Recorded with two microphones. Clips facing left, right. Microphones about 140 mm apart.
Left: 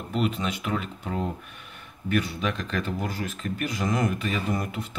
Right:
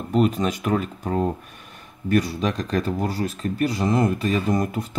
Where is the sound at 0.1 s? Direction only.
40° right (ahead or behind).